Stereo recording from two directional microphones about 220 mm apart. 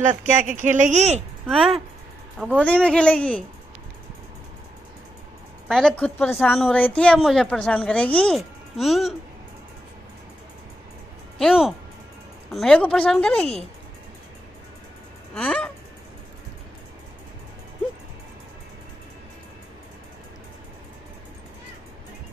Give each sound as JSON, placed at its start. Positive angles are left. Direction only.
{"t": 0.0, "sound": "speech", "side_deg": -35}
{"t": 1.5, "sound": "a woman's voice", "side_deg": 0}
{"t": 5.7, "sound": "a woman's voice", "side_deg": 5}
{"t": 11.3, "sound": "a woman's voice", "side_deg": 0}
{"t": 15.3, "sound": "a woman's voice", "side_deg": 5}